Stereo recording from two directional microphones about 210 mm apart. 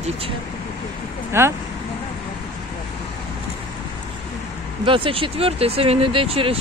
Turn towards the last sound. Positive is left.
turn(degrees=-25)  # may be behind; listen again after turning